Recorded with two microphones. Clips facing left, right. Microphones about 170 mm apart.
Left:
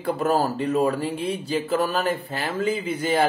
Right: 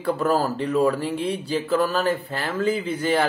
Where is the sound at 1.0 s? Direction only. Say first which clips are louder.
Right 1 dB; 10° left (ahead or behind).